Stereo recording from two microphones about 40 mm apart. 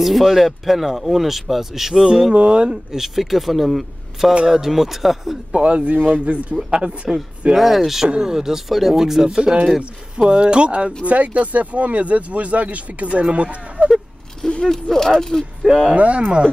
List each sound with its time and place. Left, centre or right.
0.0 s speech: centre
2.3 s speech: right
2.9 s speech: centre
5.5 s speech: right
5.9 s speech: right
6.7 s speech: right
7.5 s speech: centre
8.1 s speech: centre; by 13.8 s right
14.5 s speech: centre
15.6 s speech: centre
16.0 s speech: right